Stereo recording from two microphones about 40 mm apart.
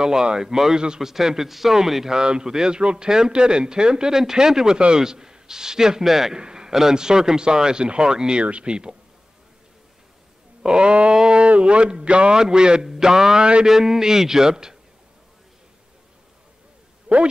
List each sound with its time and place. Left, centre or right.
0.0 s a man's voice: centre
6.3 s a man's voice: centre
10.6 s a man's voice: right
11.4 s a man's voice: right; by 14.8 s centre
17.1 s speech: right